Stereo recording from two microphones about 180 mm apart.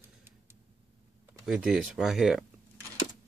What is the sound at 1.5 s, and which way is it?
Speech, 5° right (ahead or behind).